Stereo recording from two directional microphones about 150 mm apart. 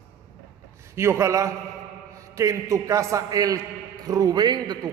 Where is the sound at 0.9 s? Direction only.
15° right (ahead or behind).